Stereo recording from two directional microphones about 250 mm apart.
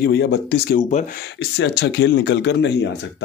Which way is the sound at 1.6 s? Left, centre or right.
Left.